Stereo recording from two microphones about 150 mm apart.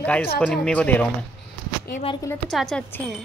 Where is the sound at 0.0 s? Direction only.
10° left (ahead or behind).